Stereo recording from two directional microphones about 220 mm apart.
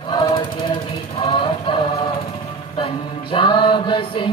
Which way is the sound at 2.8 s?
20° left (ahead or behind).